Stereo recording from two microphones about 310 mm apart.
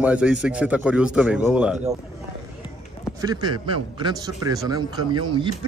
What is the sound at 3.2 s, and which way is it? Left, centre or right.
A man's voice, centre.